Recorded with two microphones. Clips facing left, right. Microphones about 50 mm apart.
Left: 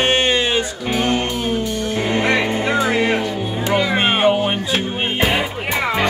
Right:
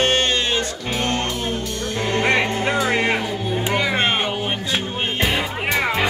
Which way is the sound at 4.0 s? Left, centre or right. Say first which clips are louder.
Left 5 dB; centre.